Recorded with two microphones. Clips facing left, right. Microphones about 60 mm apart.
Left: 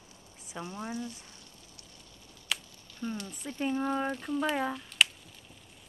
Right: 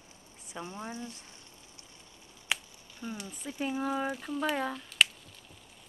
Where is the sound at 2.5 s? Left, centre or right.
Centre.